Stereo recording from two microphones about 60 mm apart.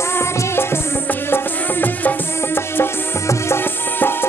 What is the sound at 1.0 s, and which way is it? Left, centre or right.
Music, left.